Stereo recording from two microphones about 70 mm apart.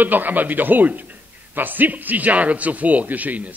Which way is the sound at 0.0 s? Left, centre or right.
Right.